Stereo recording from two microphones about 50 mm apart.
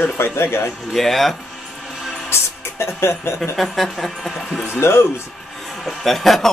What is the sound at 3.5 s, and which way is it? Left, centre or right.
Speech, centre.